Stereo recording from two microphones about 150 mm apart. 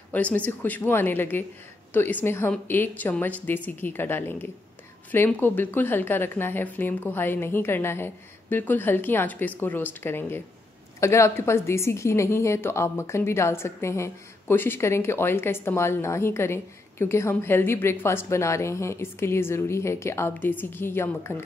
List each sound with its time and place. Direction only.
0.1 s a woman's voice: 10° left (ahead or behind)